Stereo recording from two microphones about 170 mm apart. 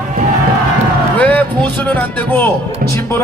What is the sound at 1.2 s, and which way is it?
Speech, 10° left (ahead or behind).